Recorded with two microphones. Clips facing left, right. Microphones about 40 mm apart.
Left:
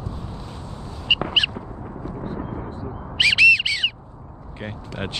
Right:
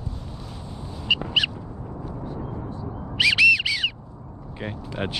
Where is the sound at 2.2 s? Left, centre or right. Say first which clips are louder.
Left 4 dB; left.